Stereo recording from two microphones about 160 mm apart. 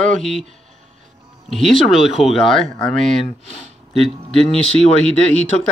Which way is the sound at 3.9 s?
Centre (ahead or behind).